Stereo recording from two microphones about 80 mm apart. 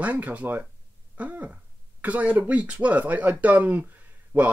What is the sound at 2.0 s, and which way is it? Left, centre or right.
Speech, centre.